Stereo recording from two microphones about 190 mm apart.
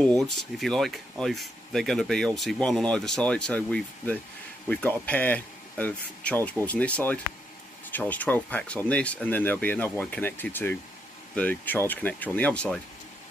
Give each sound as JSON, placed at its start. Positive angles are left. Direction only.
{"t": 0.0, "sound": "speech", "side_deg": 0}